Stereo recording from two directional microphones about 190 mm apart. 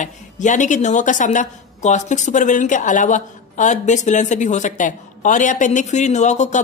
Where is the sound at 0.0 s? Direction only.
40° left (ahead or behind).